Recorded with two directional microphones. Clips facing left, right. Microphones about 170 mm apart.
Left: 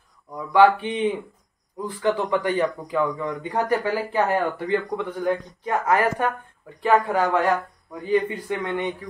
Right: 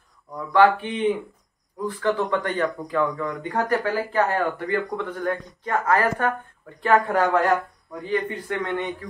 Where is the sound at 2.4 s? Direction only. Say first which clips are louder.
Left 2 dB; 10° left (ahead or behind).